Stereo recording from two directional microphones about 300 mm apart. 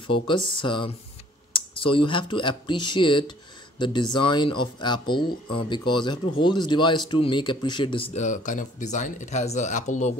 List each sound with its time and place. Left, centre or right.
0.0 s speech: centre